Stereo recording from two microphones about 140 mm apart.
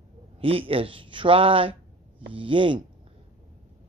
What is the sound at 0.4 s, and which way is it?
Speech, 40° right (ahead or behind).